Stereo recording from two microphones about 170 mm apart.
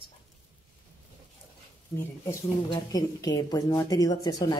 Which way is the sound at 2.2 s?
25° left (ahead or behind).